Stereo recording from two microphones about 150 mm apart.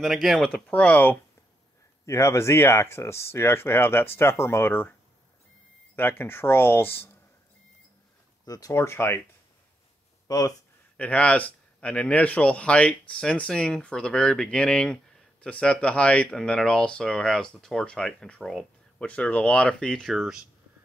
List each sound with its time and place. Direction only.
0.0 s a man's voice: centre (ahead or behind)
5.9 s a man's voice: 15° left (ahead or behind)
8.5 s a man's voice: 25° left (ahead or behind)
10.2 s speech: 25° left (ahead or behind)
11.0 s a man's voice: 10° left (ahead or behind)